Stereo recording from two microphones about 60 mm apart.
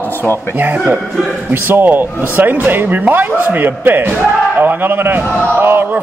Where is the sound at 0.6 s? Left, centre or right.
Right.